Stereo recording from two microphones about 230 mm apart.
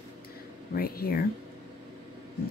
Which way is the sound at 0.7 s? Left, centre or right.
Left.